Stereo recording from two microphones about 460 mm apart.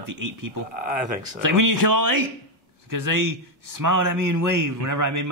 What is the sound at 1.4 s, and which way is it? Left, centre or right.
A man's voice, right.